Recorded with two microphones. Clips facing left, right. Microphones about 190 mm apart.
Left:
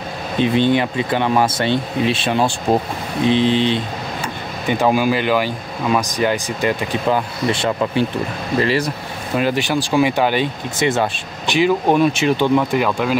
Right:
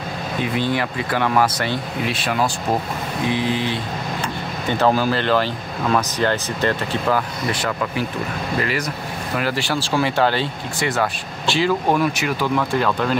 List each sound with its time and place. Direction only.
0.4 s speech: 25° left (ahead or behind)
4.6 s speech: 15° left (ahead or behind)